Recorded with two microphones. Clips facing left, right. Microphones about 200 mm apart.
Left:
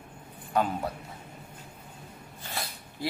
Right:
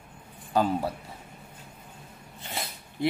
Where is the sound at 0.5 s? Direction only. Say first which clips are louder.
Right 3 dB; 30° right (ahead or behind).